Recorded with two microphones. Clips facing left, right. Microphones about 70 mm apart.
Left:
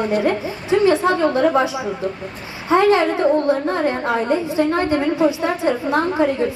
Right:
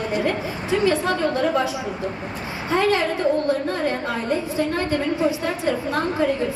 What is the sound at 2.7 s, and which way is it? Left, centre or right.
Speech, left.